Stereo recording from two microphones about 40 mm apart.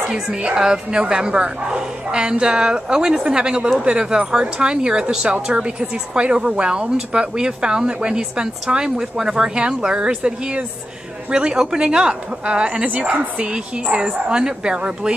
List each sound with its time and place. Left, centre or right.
0.1 s speech: right
13.9 s speech: right